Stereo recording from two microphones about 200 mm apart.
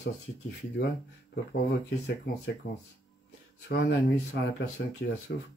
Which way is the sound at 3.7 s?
55° left (ahead or behind).